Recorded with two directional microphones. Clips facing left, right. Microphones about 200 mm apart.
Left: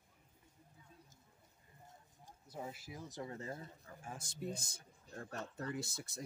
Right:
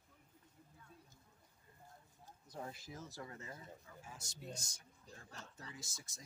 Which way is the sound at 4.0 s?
55° left (ahead or behind).